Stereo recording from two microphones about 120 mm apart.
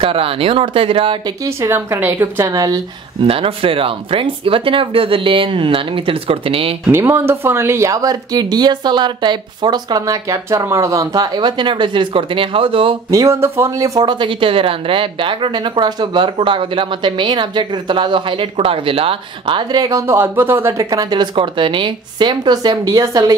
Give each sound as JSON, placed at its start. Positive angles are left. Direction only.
{"t": 0.0, "sound": "speech", "side_deg": -50}
{"t": 1.4, "sound": "speech", "side_deg": -20}
{"t": 3.2, "sound": "speech", "side_deg": -50}
{"t": 6.9, "sound": "speech", "side_deg": -20}
{"t": 13.1, "sound": "speech", "side_deg": -25}